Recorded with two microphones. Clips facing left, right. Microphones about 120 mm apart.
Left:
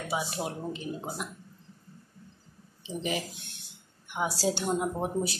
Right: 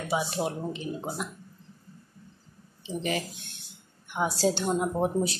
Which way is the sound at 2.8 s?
10° left (ahead or behind).